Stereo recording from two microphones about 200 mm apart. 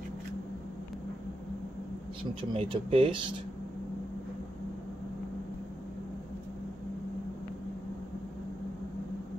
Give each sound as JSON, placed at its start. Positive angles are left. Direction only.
{"t": 2.5, "sound": "speech", "side_deg": -30}